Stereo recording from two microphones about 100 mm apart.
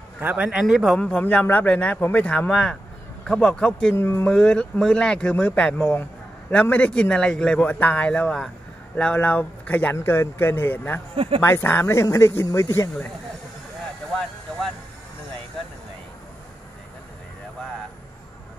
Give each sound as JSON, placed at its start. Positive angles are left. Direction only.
{"t": 0.2, "sound": "speech", "side_deg": -15}
{"t": 0.9, "sound": "speech", "side_deg": 10}
{"t": 3.9, "sound": "speech", "side_deg": 25}
{"t": 4.3, "sound": "speech", "side_deg": 10}
{"t": 11.1, "sound": "speech", "side_deg": -70}
{"t": 11.4, "sound": "speech", "side_deg": 25}